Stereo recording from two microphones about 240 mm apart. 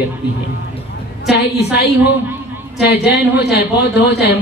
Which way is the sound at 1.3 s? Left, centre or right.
Left.